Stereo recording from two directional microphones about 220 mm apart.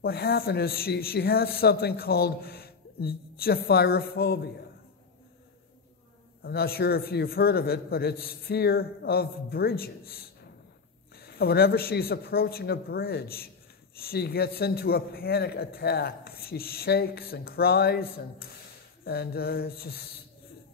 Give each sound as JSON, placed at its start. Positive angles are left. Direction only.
{"t": 0.0, "sound": "a man's voice", "side_deg": 45}
{"t": 6.4, "sound": "a man's voice", "side_deg": 45}